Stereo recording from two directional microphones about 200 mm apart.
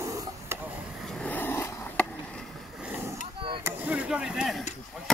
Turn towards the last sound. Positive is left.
turn(degrees=-5)  # may be behind; listen again after turning